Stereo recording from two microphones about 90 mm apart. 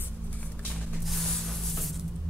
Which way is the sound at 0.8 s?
Centre (ahead or behind).